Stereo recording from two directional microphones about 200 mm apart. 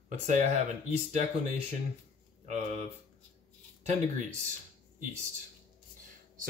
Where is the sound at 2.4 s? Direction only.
35° right (ahead or behind).